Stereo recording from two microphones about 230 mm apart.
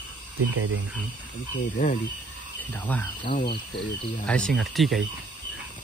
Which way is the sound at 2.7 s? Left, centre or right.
Centre.